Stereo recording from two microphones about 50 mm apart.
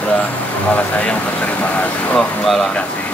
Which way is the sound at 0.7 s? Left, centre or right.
Left.